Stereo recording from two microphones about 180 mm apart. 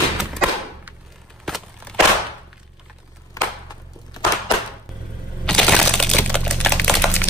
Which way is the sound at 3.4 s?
20° left (ahead or behind).